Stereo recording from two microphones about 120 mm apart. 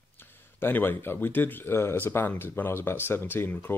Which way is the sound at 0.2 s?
20° left (ahead or behind).